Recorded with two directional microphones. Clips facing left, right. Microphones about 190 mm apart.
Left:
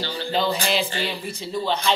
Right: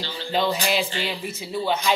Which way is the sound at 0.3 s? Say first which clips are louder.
Even; centre (ahead or behind).